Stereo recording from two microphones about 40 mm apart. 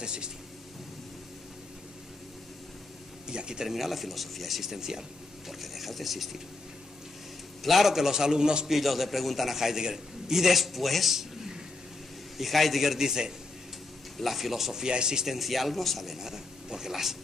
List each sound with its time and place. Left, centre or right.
0.0 s speech: right
3.3 s speech: centre
3.6 s a man's voice: centre
7.6 s speech: centre
8.6 s a man's voice: centre
12.4 s a man's voice: centre
14.1 s speech: centre
15.2 s a man's voice: centre
16.2 s speech: centre